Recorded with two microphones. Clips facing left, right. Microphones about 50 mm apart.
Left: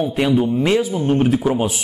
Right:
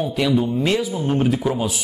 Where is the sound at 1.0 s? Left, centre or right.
Left.